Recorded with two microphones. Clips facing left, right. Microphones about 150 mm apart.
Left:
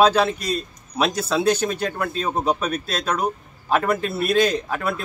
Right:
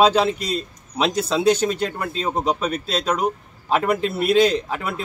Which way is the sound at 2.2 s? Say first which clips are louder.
Right 1 dB; 20° right (ahead or behind).